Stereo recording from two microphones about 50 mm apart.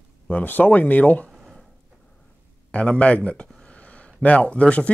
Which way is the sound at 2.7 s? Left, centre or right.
Left.